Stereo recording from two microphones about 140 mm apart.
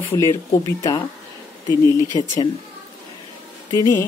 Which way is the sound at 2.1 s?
25° left (ahead or behind).